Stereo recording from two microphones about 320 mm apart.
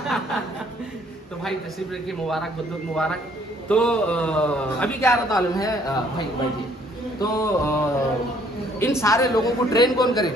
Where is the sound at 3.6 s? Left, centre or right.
Centre.